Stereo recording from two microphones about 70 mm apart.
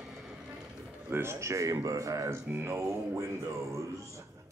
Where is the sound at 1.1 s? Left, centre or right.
Right.